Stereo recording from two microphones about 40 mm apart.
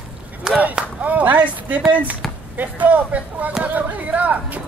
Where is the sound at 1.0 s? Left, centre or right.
Right.